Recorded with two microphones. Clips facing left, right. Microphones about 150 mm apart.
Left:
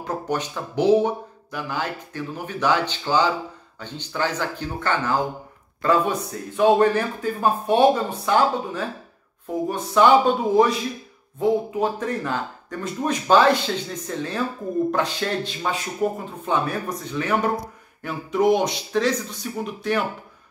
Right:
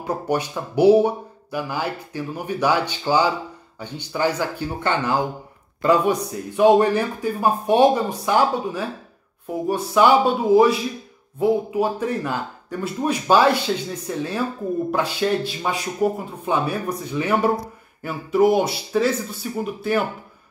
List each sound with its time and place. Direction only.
0.0 s speech: 10° right (ahead or behind)